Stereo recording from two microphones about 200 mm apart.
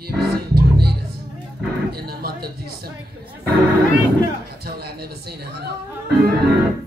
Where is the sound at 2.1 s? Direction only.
50° right (ahead or behind).